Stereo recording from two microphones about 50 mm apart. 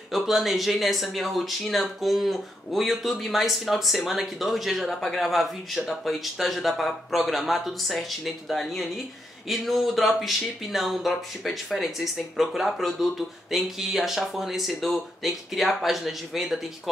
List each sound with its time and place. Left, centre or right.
0.1 s speech: centre